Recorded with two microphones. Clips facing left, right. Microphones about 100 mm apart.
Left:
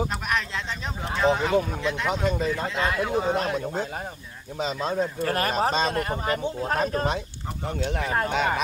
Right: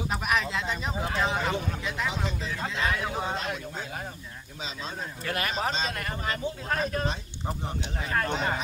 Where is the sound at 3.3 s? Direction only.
45° left (ahead or behind); by 6.3 s 30° left (ahead or behind).